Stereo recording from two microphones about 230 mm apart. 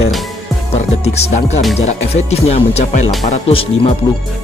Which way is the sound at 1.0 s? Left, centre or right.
Left.